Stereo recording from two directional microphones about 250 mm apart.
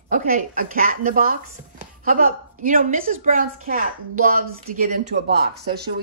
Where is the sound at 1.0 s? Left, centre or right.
Right.